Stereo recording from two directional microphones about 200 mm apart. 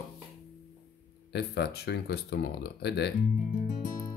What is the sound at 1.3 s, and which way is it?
Speech, 55° left (ahead or behind).